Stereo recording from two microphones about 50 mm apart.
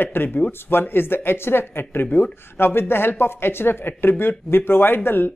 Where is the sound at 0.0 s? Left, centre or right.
Left.